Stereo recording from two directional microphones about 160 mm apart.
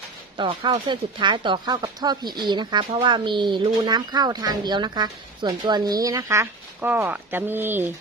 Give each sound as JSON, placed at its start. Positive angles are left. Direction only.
{"t": 0.4, "sound": "speech", "side_deg": -30}